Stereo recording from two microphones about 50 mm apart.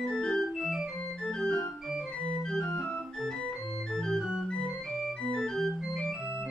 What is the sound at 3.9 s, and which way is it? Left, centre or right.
Organ, centre.